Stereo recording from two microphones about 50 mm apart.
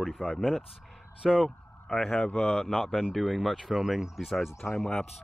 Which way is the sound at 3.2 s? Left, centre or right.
Centre.